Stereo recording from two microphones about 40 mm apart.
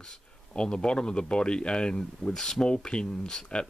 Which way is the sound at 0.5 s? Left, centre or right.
Left.